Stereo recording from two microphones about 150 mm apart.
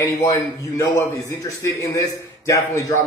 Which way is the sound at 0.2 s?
25° left (ahead or behind).